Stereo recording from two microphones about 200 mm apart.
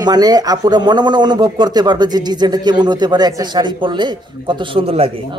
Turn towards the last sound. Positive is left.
turn(degrees=-30)  # may be behind; listen again after turning